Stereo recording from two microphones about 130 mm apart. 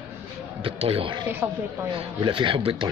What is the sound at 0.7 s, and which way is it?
Speech, 45° right (ahead or behind).